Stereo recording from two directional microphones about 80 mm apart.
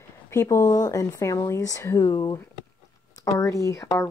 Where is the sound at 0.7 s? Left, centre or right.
Left.